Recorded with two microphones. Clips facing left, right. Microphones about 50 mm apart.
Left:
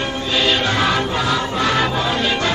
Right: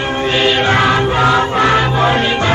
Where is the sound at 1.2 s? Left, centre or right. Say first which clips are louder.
Right 8 dB; right.